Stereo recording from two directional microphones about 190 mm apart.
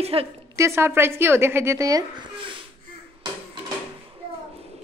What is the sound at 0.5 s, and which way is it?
A woman's voice, 15° right (ahead or behind).